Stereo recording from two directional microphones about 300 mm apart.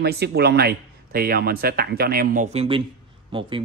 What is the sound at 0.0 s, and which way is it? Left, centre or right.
Speech, right.